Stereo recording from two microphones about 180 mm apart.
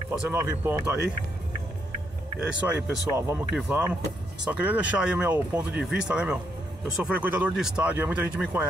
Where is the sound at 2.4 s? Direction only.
5° right (ahead or behind).